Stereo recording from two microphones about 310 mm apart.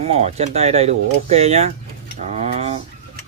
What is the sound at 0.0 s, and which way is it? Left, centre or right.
Speech, centre.